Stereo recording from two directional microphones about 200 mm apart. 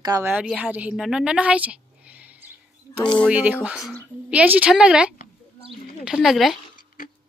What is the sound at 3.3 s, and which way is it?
A woman's voice, 5° right (ahead or behind).